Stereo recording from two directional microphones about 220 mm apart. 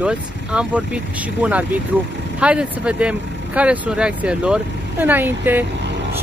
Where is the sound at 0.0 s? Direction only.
5° right (ahead or behind).